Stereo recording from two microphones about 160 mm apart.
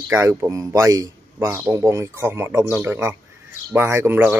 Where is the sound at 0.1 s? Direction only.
15° right (ahead or behind).